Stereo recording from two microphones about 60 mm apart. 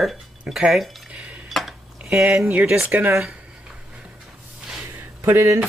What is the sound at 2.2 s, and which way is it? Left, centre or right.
Speech, right.